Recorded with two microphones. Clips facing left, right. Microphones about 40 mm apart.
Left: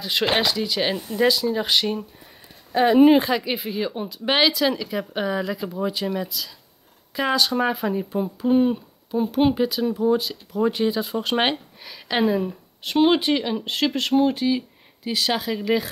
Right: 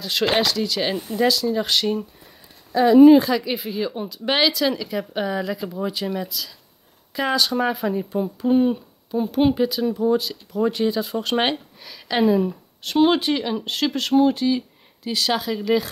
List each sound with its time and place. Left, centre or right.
0.0 s speech: centre
2.7 s speech: left
3.5 s speech: centre